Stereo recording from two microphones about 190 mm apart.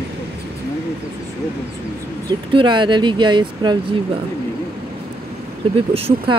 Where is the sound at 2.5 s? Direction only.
25° right (ahead or behind).